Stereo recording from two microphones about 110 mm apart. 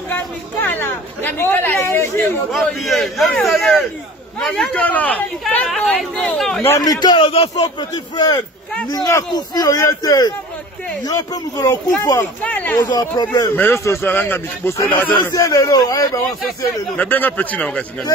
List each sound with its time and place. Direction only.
0.1 s speech: 20° left (ahead or behind)
2.5 s a man's voice: centre (ahead or behind)
5.7 s a man's voice: 5° left (ahead or behind)
6.8 s speech: 35° left (ahead or behind)
8.9 s a man's voice: 25° left (ahead or behind)
12.2 s speech: 15° left (ahead or behind)
12.8 s speech: 35° left (ahead or behind)
13.6 s a man's voice: 20° left (ahead or behind)
15.1 s speech: 30° left (ahead or behind)
16.9 s speech: 15° left (ahead or behind)